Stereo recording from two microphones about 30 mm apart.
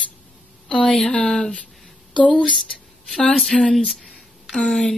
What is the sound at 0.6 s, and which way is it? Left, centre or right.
Speech, left.